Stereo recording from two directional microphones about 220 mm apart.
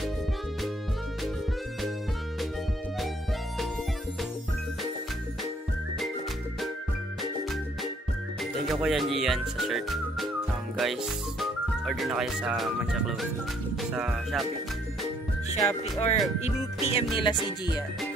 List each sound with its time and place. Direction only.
8.8 s speech: centre (ahead or behind)
15.6 s speech: 30° left (ahead or behind)
16.3 s music: 30° left (ahead or behind)